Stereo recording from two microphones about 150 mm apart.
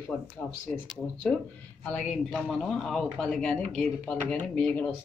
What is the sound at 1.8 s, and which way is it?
Speech, centre (ahead or behind).